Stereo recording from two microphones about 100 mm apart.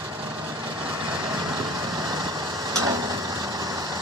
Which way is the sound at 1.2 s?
40° right (ahead or behind).